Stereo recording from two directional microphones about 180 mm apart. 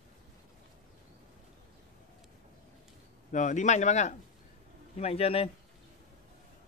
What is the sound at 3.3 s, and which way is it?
Speech, 40° left (ahead or behind).